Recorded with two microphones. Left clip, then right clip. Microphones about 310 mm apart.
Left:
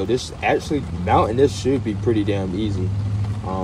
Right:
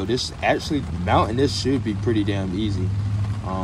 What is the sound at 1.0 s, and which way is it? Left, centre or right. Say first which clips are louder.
Speech: left 3 dB; right.